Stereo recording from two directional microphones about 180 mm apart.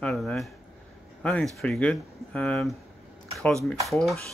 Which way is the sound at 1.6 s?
5° left (ahead or behind).